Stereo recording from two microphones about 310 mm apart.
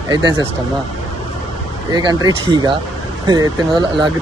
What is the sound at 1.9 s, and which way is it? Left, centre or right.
Speech, centre.